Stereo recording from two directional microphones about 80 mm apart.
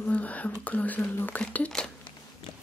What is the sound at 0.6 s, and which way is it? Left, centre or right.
Speech, centre.